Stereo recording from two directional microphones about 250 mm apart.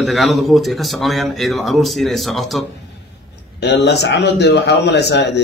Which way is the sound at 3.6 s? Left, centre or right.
Left.